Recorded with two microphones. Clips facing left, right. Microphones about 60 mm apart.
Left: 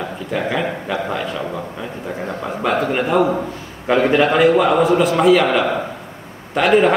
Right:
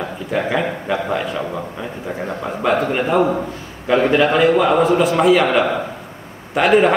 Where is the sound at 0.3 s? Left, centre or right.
Centre.